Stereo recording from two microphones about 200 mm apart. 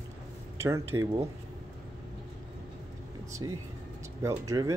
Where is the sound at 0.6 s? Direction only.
15° right (ahead or behind).